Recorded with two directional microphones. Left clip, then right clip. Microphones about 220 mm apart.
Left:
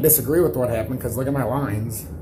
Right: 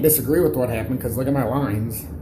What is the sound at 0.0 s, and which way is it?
Speech, centre (ahead or behind).